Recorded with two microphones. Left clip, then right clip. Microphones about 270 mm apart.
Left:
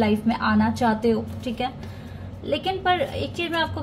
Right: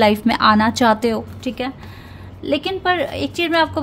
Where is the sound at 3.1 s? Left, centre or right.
Right.